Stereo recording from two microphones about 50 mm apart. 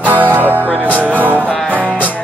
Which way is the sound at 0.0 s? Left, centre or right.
Right.